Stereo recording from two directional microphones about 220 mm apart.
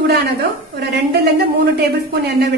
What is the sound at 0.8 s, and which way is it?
A woman's voice, 50° right (ahead or behind).